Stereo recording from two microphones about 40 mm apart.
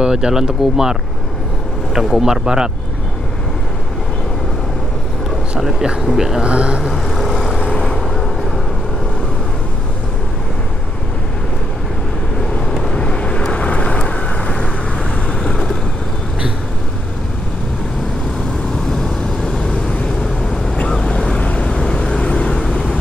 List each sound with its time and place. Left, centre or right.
0.0 s speech: centre
2.0 s speech: centre
5.6 s speech: centre
6.4 s speech: right
6.9 s vehicle: centre
12.9 s vehicle: left
19.4 s vehicle: centre
19.7 s vehicle: left
20.9 s vehicle: centre
22.5 s vehicle: centre